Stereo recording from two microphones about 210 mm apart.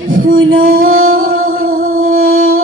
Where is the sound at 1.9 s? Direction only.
75° right (ahead or behind).